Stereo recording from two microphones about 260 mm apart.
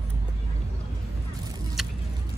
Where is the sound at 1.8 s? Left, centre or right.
Centre.